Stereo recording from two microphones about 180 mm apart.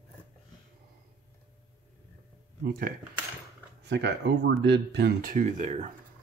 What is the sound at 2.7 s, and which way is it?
Speech, 50° right (ahead or behind).